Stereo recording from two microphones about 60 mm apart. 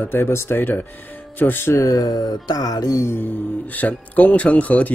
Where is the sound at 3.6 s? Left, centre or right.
Left.